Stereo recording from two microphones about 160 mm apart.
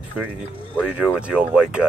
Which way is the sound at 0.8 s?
5° right (ahead or behind).